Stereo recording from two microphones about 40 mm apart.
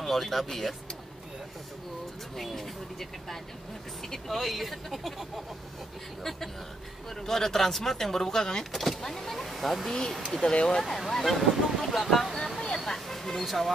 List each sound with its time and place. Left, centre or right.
0.0 s speech: centre
2.3 s speech: centre
7.2 s speech: centre
9.8 s speech: centre
10.8 s speech: centre